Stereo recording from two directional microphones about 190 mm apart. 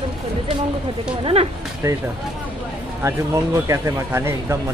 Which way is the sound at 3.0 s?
15° right (ahead or behind).